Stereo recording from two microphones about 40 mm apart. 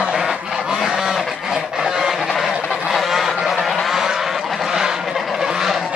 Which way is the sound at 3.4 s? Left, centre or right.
Centre.